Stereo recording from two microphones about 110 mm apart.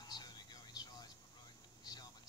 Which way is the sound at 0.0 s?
40° left (ahead or behind).